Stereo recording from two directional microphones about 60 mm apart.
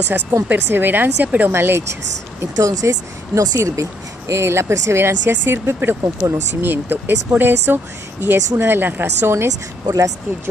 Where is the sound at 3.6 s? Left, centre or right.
Right.